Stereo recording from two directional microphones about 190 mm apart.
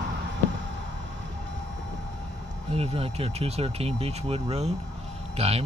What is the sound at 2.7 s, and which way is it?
Speech, 30° right (ahead or behind).